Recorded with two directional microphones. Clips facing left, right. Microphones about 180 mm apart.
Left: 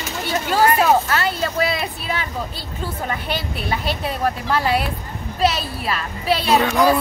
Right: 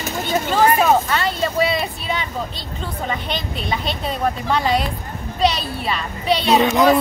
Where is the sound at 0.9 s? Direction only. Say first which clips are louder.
Even; 5° left (ahead or behind).